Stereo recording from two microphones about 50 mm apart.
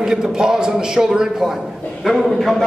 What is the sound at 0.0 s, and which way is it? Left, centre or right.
A man's voice, centre.